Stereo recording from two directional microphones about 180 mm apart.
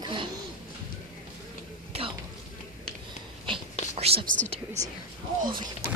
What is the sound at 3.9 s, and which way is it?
Whispering, 35° right (ahead or behind).